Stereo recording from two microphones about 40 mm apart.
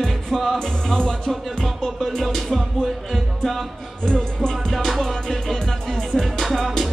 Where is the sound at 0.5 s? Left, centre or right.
Centre.